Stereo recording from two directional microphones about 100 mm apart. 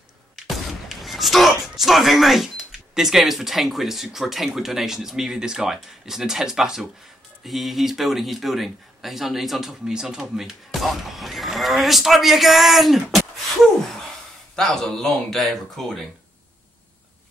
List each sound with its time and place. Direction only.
0.5 s a man's voice: centre (ahead or behind)